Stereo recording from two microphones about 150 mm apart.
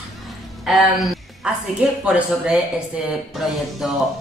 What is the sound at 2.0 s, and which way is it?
A man's voice, 5° right (ahead or behind).